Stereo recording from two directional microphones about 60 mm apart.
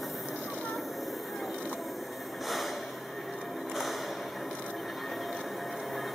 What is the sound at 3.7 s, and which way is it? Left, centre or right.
Music, centre.